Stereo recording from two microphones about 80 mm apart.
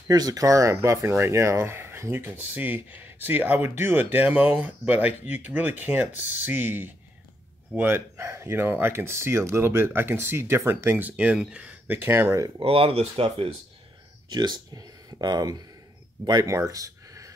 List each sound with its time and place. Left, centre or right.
0.1 s speech: right; by 11.7 s centre
11.9 s speech: right
14.3 s speech: right
16.4 s a sound: right